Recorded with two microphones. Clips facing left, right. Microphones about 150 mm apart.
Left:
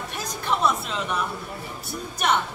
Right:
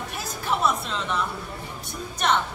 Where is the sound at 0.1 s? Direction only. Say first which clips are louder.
Left 1 dB; centre (ahead or behind).